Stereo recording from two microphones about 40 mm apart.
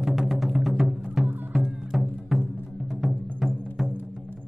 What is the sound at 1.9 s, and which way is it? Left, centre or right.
Music, centre.